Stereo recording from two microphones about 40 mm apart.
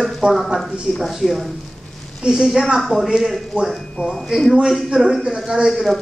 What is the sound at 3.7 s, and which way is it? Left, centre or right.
Speech, centre.